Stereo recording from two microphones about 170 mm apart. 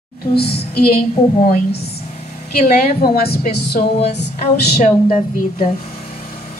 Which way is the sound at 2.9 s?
65° left (ahead or behind).